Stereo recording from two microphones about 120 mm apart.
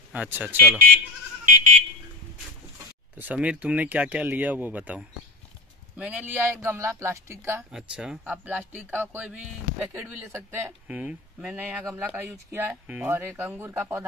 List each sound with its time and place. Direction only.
0.1 s speech: 15° right (ahead or behind)
1.5 s buzzer: 90° right
3.2 s speech: 15° right (ahead or behind)
7.7 s speech: 5° right (ahead or behind)